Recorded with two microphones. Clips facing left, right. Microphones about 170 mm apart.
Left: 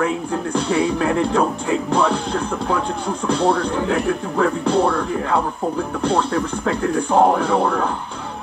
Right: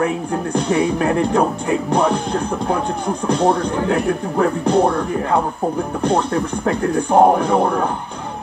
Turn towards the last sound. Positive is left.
turn(degrees=-20)  # may be behind; listen again after turning